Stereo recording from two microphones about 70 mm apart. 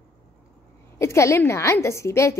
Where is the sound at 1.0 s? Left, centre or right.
Left.